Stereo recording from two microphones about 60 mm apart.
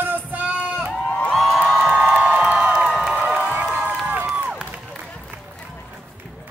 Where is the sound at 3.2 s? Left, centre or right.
Right.